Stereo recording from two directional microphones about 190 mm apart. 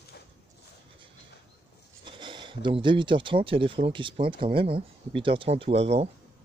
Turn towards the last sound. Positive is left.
turn(degrees=-30)  # may be behind; listen again after turning